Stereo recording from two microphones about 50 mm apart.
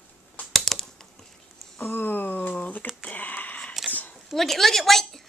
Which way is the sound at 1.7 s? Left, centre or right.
Left.